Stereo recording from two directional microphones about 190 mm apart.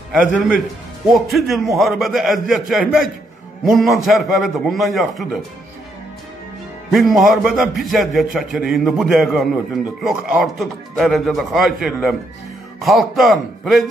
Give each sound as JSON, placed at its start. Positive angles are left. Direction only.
{"t": 0.1, "sound": "a man's voice", "side_deg": 0}
{"t": 6.9, "sound": "a man's voice", "side_deg": 0}